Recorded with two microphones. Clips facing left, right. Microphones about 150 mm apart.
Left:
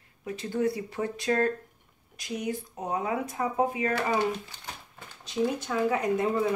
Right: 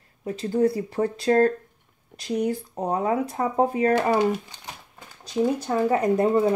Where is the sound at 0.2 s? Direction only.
35° right (ahead or behind).